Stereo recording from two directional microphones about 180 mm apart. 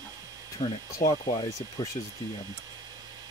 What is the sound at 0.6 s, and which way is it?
Speech, 35° left (ahead or behind).